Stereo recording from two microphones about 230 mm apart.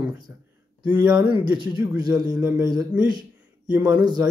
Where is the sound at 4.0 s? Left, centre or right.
Centre.